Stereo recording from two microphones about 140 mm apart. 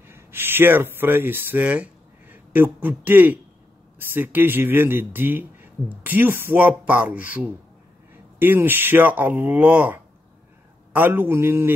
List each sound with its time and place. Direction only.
0.0 s speech: 15° right (ahead or behind)